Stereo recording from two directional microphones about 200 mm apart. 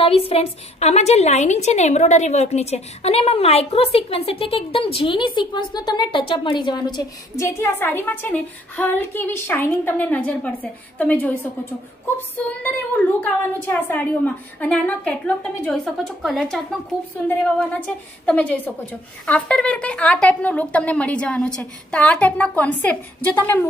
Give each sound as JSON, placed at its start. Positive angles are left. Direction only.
{"t": 0.0, "sound": "a woman's voice", "side_deg": 30}